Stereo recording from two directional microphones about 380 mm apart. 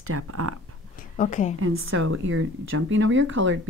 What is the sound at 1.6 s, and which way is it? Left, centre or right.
A woman's voice, right.